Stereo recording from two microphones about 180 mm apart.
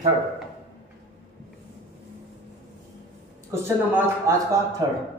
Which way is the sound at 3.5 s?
15° right (ahead or behind).